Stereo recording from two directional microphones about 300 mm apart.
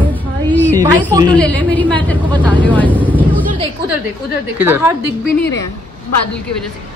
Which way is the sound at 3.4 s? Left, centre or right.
Centre.